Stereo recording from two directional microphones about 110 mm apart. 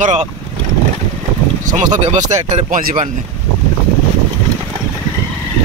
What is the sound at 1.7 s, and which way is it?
Speech, 90° right.